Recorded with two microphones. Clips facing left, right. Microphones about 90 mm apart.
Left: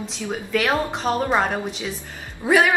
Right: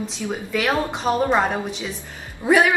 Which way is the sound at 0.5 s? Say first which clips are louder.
Left 1 dB; centre (ahead or behind).